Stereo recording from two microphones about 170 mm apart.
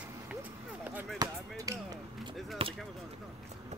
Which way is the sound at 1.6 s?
20° right (ahead or behind).